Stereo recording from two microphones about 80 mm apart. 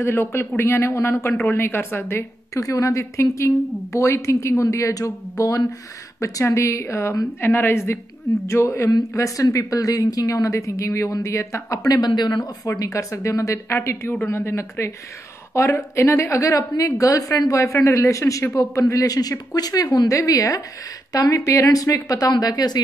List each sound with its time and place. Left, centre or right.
0.0 s a woman's voice: left
12.1 s speech: left
12.6 s a woman's voice: left
13.7 s a woman's voice: left
19.0 s a woman's voice: left